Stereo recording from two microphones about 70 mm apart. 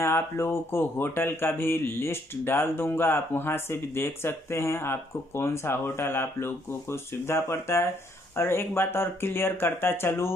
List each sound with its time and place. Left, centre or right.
0.0 s speech: left